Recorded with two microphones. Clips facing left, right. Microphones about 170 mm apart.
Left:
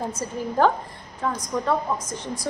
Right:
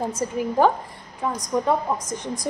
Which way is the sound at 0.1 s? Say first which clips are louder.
Right 3 dB; 15° right (ahead or behind).